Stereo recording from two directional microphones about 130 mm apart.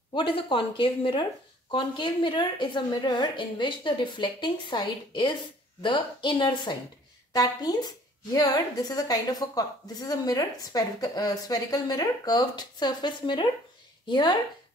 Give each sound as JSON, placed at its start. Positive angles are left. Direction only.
{"t": 0.1, "sound": "a woman's voice", "side_deg": 40}